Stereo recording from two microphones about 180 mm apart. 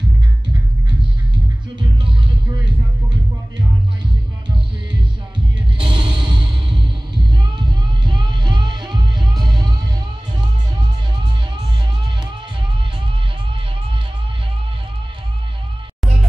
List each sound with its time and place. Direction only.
1.8 s music: 30° right (ahead or behind)
5.8 s music: 30° right (ahead or behind)